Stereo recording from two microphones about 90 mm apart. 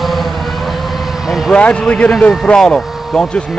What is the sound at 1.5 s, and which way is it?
Speech, 10° left (ahead or behind).